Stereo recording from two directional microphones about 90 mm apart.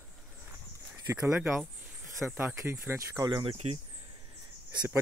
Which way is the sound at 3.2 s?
50° right (ahead or behind).